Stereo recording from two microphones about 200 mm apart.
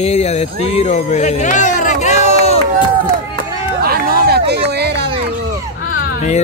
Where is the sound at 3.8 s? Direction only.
50° right (ahead or behind).